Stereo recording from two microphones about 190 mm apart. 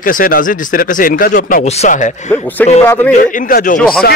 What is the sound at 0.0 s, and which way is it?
A man's voice, 45° left (ahead or behind).